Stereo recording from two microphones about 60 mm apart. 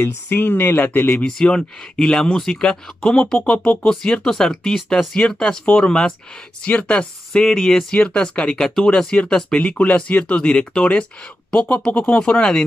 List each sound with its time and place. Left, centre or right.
0.0 s speech: left
1.2 s speech: centre
7.4 s speech: centre